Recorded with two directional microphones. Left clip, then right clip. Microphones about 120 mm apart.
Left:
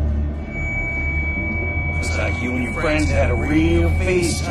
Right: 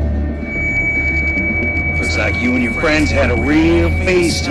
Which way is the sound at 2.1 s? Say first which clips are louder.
Right 6 dB; 40° right (ahead or behind).